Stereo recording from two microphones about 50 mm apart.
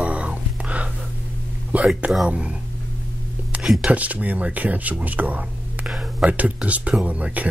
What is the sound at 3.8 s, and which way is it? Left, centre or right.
Speech, right.